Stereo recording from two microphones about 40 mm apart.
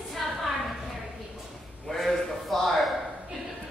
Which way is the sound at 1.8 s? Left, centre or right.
Centre.